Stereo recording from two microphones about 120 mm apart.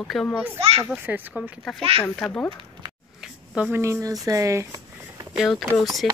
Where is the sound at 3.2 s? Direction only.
5° right (ahead or behind).